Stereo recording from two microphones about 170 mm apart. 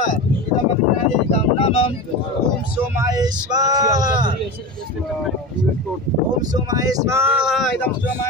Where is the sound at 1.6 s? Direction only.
30° left (ahead or behind).